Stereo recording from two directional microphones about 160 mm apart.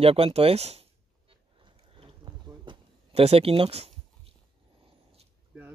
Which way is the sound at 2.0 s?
35° right (ahead or behind).